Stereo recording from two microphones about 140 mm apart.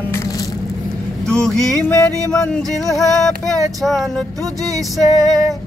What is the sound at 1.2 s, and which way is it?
Speech, 5° left (ahead or behind).